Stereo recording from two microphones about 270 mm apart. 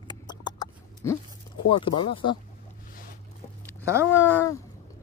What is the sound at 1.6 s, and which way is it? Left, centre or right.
Speech, centre.